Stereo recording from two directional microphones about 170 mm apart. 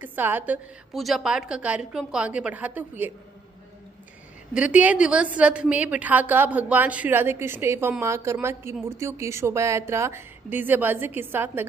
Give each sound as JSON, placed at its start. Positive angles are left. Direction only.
{"t": 0.0, "sound": "a woman's voice", "side_deg": -10}
{"t": 0.9, "sound": "a woman's voice", "side_deg": 0}
{"t": 4.6, "sound": "a woman's voice", "side_deg": -5}